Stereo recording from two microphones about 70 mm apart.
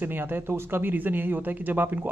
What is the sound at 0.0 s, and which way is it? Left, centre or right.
Speech, right.